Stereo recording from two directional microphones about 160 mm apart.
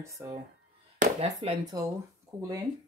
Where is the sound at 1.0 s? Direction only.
40° right (ahead or behind).